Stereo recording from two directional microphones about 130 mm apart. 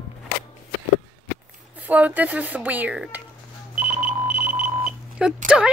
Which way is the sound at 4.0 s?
90° right.